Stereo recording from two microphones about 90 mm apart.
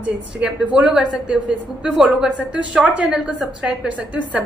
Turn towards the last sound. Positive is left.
turn(degrees=-15)  # may be behind; listen again after turning